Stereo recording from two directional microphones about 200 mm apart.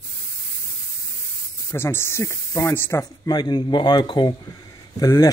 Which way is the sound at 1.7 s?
10° left (ahead or behind).